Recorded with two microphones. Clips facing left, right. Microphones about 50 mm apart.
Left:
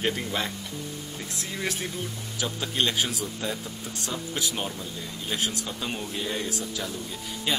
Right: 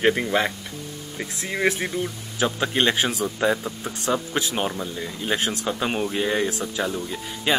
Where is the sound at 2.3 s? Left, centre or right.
Right.